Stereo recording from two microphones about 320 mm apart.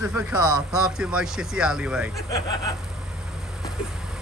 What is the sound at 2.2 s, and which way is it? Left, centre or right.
Speech, centre.